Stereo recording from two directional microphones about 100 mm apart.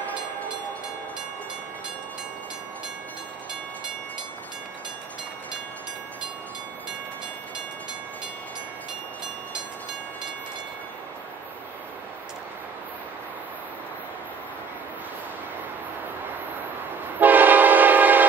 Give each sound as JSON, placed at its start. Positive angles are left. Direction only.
{"t": 17.2, "sound": "train", "side_deg": -20}